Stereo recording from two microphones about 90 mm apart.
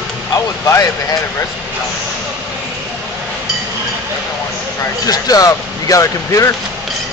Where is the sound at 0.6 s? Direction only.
40° left (ahead or behind).